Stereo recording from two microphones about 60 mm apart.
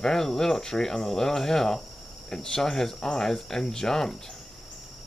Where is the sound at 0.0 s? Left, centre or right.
Centre.